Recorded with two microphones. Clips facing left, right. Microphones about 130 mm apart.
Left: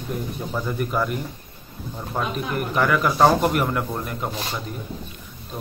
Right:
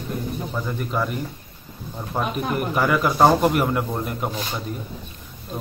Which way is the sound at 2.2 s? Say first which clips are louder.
Right 2 dB; 10° right (ahead or behind).